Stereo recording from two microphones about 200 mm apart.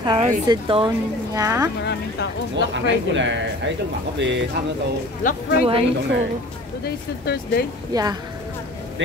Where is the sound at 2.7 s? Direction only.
65° right (ahead or behind).